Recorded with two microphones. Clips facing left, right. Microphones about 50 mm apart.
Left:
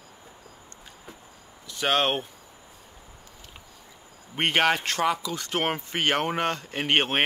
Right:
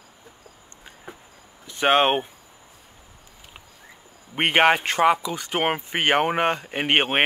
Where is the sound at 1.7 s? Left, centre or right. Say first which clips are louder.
Right 6 dB; right.